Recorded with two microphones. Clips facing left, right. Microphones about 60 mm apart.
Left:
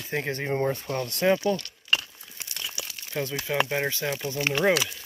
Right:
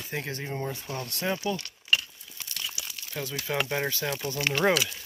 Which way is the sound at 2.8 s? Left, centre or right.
Left.